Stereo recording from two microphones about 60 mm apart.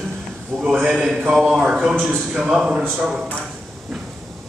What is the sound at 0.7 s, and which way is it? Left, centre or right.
Speech, centre.